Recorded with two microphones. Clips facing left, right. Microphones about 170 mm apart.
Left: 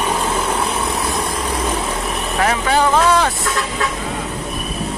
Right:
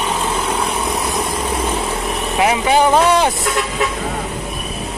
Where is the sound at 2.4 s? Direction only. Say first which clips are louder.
Right 3 dB; 10° right (ahead or behind).